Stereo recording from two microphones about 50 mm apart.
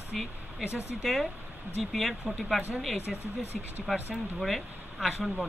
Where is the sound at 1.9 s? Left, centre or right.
Centre.